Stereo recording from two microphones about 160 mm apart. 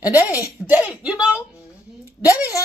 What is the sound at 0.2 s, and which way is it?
Speech, 20° left (ahead or behind).